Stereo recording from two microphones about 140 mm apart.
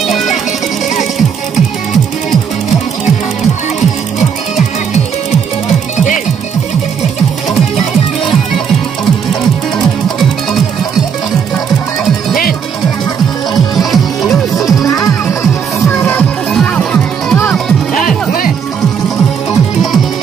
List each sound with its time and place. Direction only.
0.0 s music: centre (ahead or behind)
13.7 s music: centre (ahead or behind)
15.9 s music: 10° left (ahead or behind)